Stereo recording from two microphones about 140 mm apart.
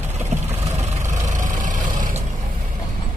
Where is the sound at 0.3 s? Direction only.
50° right (ahead or behind); by 2.2 s 65° right (ahead or behind).